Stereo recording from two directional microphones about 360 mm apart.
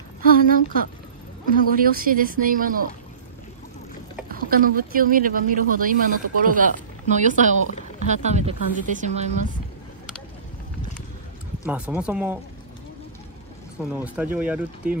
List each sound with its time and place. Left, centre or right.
0.2 s a sound: right
1.7 s speech: right
4.3 s speech: right
11.6 s speech: centre
13.9 s speech: centre